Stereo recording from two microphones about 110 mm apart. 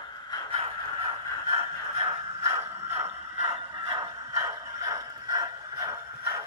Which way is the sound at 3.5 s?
60° right (ahead or behind).